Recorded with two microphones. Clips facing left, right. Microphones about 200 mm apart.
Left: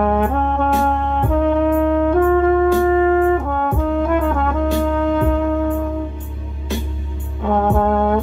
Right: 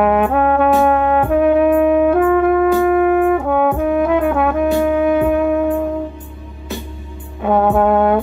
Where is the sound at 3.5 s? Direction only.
65° right (ahead or behind).